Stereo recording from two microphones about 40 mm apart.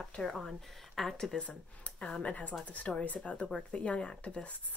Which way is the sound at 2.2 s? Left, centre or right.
Left.